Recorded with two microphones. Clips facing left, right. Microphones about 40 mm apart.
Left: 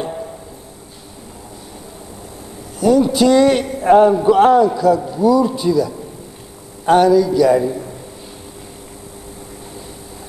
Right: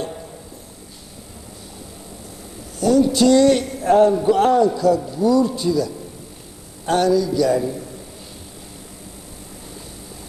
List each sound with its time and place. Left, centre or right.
2.8 s a man's voice: centre
7.5 s a man's voice: left